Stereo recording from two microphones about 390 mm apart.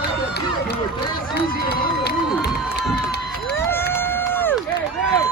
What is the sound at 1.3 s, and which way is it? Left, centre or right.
Run, left.